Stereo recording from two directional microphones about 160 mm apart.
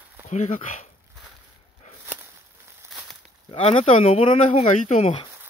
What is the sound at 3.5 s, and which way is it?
Speech, 40° left (ahead or behind).